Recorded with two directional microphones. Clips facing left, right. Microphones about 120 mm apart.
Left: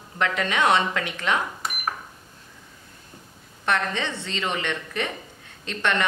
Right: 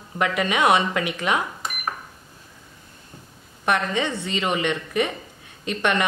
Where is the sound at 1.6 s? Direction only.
Centre (ahead or behind).